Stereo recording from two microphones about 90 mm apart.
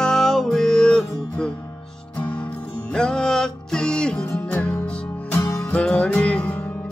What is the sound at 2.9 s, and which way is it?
Music, 10° left (ahead or behind).